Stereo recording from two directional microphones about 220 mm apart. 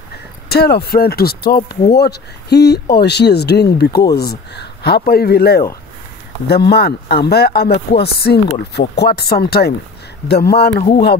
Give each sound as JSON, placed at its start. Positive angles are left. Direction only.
{"t": 0.5, "sound": "speech", "side_deg": 45}
{"t": 10.7, "sound": "speech", "side_deg": 25}